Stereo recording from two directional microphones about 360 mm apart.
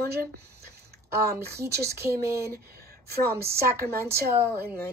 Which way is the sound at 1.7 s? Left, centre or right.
Right.